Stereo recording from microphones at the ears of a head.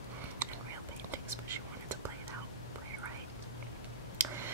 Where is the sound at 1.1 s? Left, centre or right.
Right.